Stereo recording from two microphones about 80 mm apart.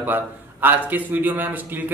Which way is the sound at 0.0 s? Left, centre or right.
Right.